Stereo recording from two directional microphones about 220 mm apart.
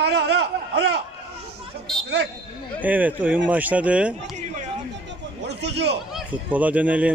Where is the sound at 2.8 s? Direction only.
5° right (ahead or behind).